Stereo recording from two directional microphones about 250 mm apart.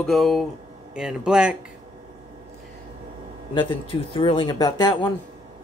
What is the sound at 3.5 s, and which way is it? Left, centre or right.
Speech, centre.